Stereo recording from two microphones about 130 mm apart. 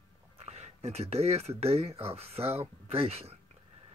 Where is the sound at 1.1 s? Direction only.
55° right (ahead or behind).